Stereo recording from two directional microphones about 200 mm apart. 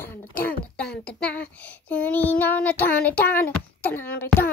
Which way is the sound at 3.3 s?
10° left (ahead or behind).